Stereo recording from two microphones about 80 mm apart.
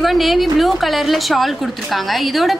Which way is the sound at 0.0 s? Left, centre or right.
Centre.